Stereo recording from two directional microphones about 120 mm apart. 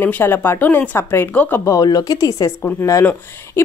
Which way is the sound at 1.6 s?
30° left (ahead or behind).